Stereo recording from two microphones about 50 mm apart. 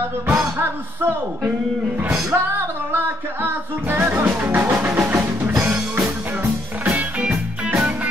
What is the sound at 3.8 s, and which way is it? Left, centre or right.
Music, right.